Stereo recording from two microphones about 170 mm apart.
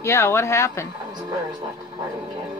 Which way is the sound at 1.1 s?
25° right (ahead or behind).